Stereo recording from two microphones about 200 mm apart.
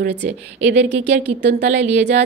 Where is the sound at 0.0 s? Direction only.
60° right (ahead or behind).